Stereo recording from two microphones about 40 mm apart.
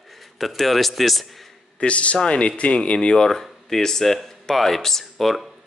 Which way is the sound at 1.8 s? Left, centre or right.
Left.